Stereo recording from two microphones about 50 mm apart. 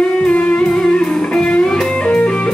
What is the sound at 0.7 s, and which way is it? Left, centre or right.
Music, centre.